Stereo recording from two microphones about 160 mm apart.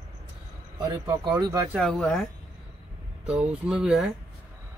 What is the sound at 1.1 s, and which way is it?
Speech, 25° right (ahead or behind).